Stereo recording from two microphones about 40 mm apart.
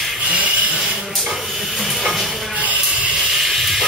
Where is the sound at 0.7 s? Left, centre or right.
Centre.